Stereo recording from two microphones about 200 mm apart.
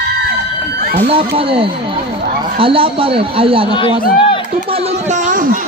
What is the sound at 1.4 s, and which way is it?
A man's voice, 25° right (ahead or behind).